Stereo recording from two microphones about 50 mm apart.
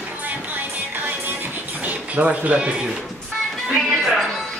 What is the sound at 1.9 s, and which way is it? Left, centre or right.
Speech, right.